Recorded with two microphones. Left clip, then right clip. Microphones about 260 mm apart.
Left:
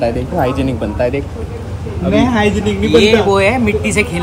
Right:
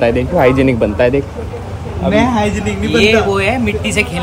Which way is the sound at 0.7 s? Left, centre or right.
Right.